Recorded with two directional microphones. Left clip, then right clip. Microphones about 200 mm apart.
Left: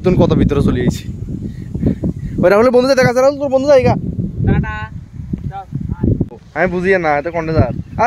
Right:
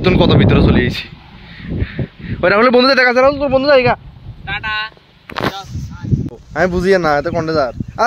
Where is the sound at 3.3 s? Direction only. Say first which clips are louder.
Even; 25° left (ahead or behind).